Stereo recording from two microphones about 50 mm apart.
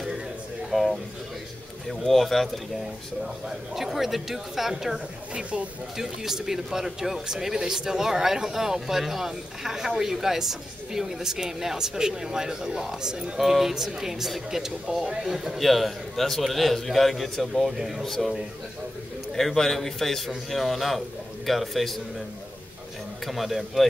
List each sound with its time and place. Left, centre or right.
0.7 s a man's voice: centre
5.3 s speech: centre
5.9 s speech: centre
15.6 s a man's voice: centre
18.0 s a man's voice: centre
19.3 s a man's voice: centre
23.2 s a man's voice: centre